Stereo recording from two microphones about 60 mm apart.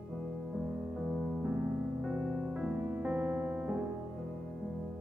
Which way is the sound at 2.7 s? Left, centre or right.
Right.